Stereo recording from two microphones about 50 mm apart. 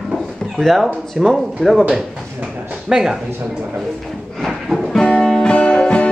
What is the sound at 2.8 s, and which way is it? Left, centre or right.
Speech, centre.